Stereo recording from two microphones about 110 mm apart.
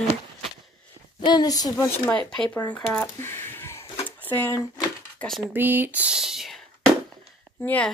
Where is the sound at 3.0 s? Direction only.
20° left (ahead or behind).